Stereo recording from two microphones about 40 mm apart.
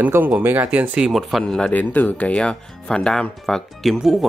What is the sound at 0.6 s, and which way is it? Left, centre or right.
Speech, right.